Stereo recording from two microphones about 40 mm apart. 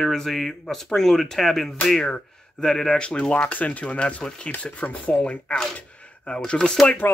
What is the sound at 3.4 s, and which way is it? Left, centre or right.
Speech, left.